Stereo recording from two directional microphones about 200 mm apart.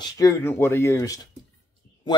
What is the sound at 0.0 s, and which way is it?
Speech, 15° left (ahead or behind).